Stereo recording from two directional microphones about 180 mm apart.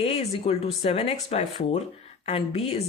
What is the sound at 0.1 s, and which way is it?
Speech, 35° left (ahead or behind).